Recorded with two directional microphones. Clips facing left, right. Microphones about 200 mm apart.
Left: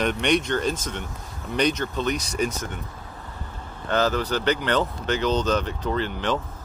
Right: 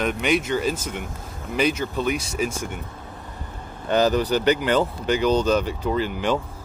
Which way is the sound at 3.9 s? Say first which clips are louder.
Right 4 dB; 15° right (ahead or behind).